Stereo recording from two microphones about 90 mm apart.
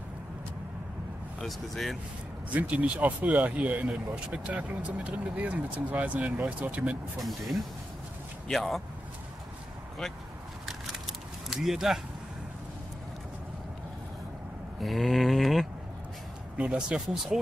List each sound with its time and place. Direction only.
1.4 s speech: 5° left (ahead or behind)
2.5 s speech: 15° right (ahead or behind)
7.2 s speech: centre (ahead or behind)
10.9 s vehicle: 5° right (ahead or behind)
14.8 s a sound: centre (ahead or behind)
16.5 s speech: 10° right (ahead or behind)